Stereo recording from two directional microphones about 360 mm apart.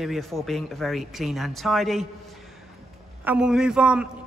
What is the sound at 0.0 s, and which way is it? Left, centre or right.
A man's voice, centre.